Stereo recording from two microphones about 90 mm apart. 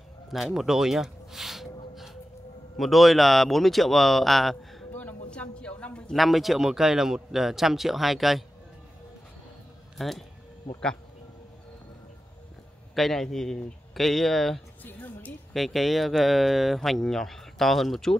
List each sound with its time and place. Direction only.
0.3 s speech: centre (ahead or behind)
4.9 s a sound: 15° left (ahead or behind)
6.1 s speech: centre (ahead or behind)
9.9 s speech: centre (ahead or behind)
12.9 s speech: 5° left (ahead or behind)
14.8 s speech: 20° left (ahead or behind)
15.5 s speech: centre (ahead or behind)